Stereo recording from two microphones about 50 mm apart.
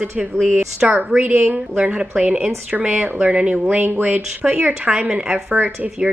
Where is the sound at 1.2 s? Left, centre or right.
Right.